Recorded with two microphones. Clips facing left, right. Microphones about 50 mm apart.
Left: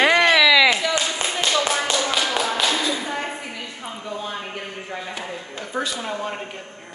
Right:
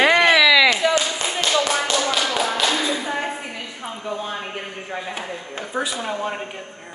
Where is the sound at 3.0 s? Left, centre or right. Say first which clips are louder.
Right 2 dB; centre.